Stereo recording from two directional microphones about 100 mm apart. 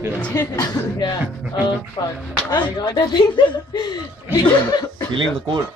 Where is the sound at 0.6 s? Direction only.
45° left (ahead or behind).